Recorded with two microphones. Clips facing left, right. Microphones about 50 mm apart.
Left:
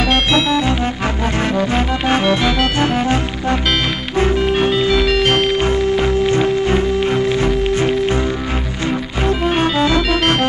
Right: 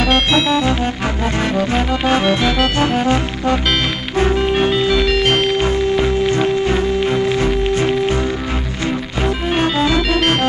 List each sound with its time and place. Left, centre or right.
0.0 s music: centre
1.2 s music: left
4.9 s music: centre
6.3 s music: left
9.9 s organ: centre